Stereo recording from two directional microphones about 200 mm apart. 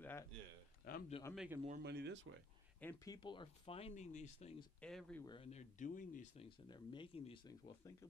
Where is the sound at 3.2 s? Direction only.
25° left (ahead or behind).